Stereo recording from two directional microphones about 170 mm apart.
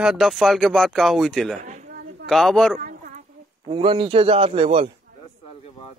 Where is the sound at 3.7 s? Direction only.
30° right (ahead or behind).